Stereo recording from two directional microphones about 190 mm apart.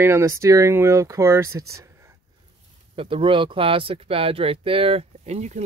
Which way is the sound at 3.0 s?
30° right (ahead or behind).